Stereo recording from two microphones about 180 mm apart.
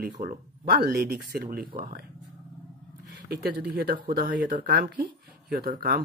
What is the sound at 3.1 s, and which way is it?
Speech, 60° right (ahead or behind).